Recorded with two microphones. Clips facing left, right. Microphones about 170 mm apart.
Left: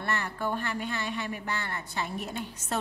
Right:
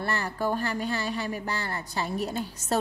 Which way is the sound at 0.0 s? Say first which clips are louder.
Right 3 dB; 35° right (ahead or behind).